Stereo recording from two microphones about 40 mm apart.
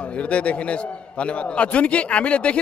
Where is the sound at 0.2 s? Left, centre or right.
Left.